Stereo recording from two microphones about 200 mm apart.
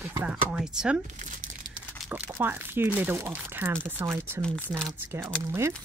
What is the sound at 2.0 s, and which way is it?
Speech, 10° right (ahead or behind).